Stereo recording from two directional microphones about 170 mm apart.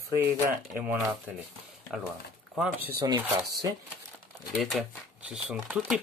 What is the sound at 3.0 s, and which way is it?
Speech, 20° right (ahead or behind).